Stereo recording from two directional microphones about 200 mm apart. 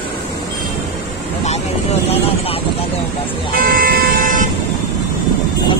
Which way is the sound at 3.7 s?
45° right (ahead or behind).